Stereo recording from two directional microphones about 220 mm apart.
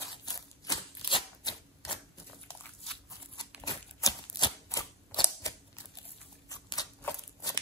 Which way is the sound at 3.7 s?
20° left (ahead or behind).